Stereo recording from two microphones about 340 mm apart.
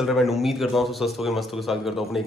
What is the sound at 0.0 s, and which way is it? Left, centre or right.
Speech, centre.